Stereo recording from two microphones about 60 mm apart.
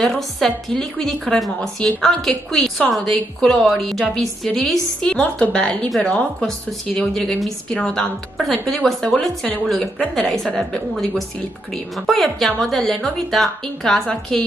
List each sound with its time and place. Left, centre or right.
0.0 s a woman's voice: centre
7.2 s a woman's voice: centre
10.1 s a woman's voice: centre